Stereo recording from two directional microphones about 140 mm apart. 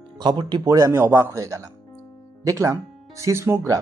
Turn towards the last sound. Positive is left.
turn(degrees=-20)  # may be behind; listen again after turning